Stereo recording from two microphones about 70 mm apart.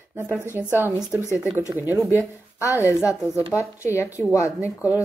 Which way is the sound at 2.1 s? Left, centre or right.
Left.